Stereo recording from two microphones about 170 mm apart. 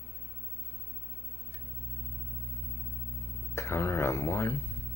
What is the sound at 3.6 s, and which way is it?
Speech, 15° left (ahead or behind).